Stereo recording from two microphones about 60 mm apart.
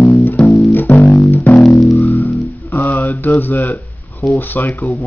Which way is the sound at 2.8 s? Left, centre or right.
Left.